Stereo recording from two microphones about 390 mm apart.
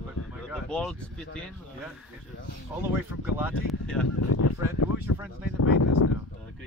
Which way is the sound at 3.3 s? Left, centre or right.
Centre.